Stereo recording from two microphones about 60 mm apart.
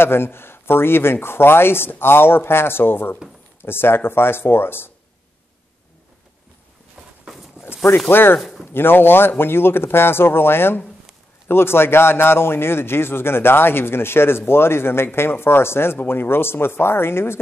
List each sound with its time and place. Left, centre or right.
0.0 s a man's voice: left
8.1 s a man's voice: left
8.4 s speech: centre
8.7 s a man's voice: left